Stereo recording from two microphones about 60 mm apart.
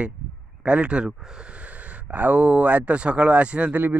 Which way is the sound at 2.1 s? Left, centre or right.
Right.